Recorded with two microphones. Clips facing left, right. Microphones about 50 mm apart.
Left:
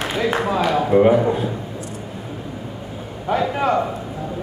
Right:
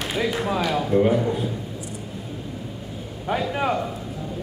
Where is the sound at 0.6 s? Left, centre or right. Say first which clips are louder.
Left 5 dB; left.